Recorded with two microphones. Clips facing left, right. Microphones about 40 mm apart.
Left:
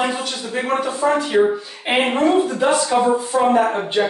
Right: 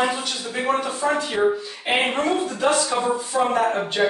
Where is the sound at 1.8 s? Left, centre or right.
Centre.